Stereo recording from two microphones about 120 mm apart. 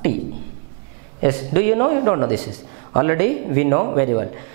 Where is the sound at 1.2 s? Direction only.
10° right (ahead or behind).